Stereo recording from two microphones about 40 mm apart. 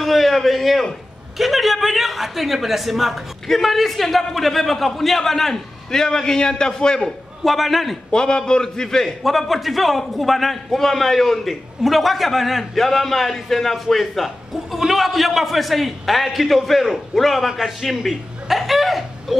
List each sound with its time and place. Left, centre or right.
0.0 s a man's voice: centre
7.4 s a man's voice: centre
8.1 s a man's voice: centre
9.5 s a man's voice: centre